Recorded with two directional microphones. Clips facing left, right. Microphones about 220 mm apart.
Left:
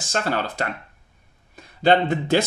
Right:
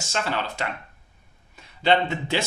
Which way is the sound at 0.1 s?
45° left (ahead or behind).